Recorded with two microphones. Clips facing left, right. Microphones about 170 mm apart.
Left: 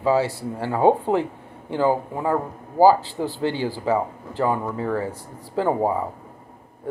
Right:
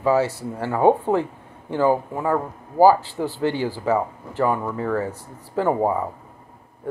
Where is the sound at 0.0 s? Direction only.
15° left (ahead or behind).